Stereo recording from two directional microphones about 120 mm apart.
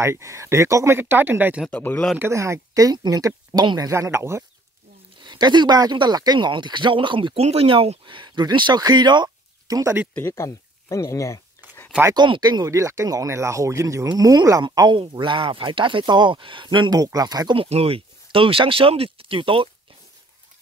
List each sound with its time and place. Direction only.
0.0 s speech: 25° right (ahead or behind)
1.7 s speech: 15° left (ahead or behind)
2.1 s speech: 20° right (ahead or behind)
5.2 s speech: 40° right (ahead or behind)
10.1 s speech: 25° left (ahead or behind)
12.1 s speech: 35° right (ahead or behind)
17.6 s speech: 55° right (ahead or behind)